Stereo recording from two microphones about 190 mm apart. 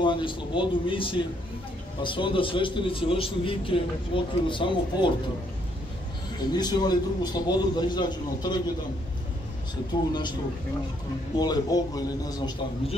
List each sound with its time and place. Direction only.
0.0 s a man's voice: 25° left (ahead or behind)
6.3 s a man's voice: 20° left (ahead or behind)
9.9 s a man's voice: 25° left (ahead or behind)
11.3 s a man's voice: 20° left (ahead or behind)